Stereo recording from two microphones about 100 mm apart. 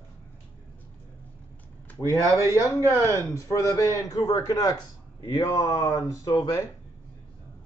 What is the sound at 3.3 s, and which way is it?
A man's voice, 30° left (ahead or behind).